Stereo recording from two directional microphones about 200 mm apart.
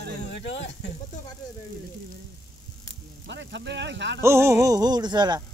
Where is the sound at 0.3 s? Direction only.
60° left (ahead or behind).